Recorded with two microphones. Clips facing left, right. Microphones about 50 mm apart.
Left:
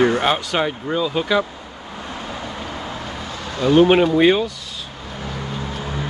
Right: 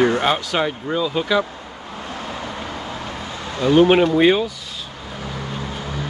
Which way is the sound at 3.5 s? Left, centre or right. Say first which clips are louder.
Even; centre.